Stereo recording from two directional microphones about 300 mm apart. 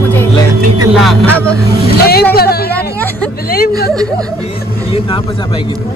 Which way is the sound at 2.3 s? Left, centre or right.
Left.